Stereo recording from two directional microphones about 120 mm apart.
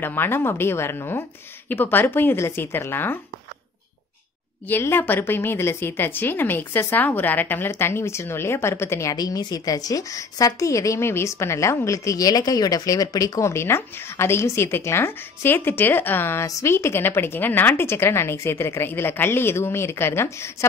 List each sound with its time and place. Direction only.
0.0 s a woman's voice: 20° left (ahead or behind)
4.6 s a woman's voice: 15° left (ahead or behind)
9.1 s a woman's voice: 35° left (ahead or behind)